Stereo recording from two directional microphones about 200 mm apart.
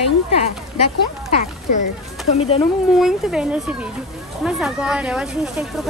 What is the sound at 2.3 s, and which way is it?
Speech, 30° left (ahead or behind).